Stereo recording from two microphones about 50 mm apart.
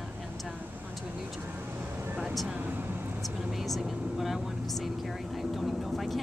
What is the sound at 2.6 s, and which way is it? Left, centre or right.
Speech, right.